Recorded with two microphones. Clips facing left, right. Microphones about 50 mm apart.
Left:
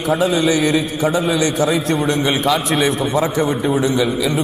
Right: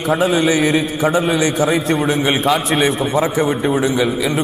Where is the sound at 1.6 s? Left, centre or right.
Centre.